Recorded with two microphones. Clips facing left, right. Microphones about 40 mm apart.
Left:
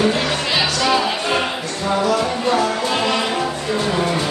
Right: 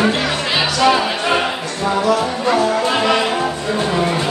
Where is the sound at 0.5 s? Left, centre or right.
Centre.